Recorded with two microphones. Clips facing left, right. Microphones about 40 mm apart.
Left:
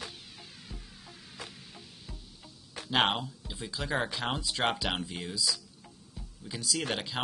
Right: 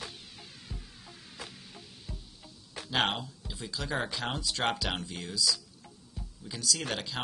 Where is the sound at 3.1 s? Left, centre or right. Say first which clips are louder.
Left 2 dB; centre.